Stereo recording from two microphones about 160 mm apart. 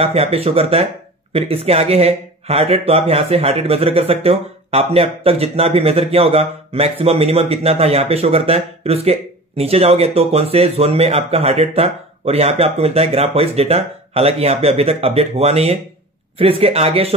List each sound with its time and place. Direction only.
0.0 s speech: 40° right (ahead or behind)